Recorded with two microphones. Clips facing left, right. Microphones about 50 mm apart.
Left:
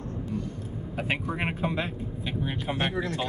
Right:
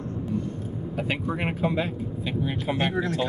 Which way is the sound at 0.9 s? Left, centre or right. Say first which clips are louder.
Right 1 dB; centre.